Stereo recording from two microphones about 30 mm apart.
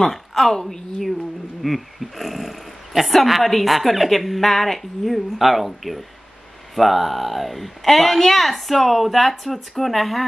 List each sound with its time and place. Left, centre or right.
0.0 s a woman's voice: centre
1.6 s speech: centre
6.7 s speech: centre